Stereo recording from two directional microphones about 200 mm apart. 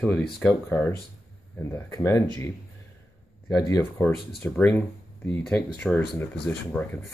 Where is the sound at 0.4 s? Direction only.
5° left (ahead or behind).